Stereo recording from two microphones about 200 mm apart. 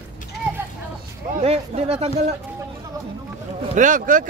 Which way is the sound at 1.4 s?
30° right (ahead or behind).